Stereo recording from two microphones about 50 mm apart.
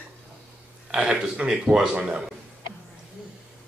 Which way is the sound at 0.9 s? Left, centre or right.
Centre.